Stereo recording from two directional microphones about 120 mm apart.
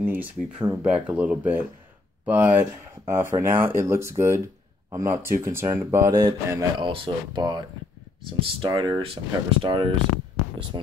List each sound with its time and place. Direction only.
0.0 s speech: 15° right (ahead or behind); by 9.9 s 40° right (ahead or behind)